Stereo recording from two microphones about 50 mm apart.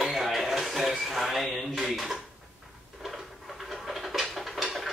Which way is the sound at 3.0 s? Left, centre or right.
Centre.